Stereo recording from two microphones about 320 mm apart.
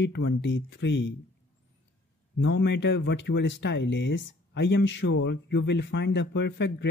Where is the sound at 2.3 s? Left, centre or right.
Left.